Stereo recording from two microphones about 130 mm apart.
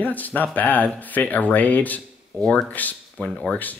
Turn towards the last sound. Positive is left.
turn(degrees=10)  # may be behind; listen again after turning